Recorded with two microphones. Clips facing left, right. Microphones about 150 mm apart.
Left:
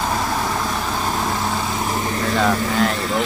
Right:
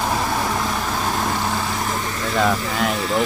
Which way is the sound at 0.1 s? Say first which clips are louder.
Even; centre (ahead or behind).